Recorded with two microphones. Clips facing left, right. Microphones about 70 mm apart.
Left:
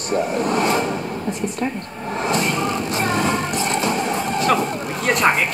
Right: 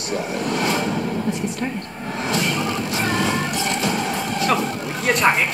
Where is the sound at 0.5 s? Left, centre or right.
Left.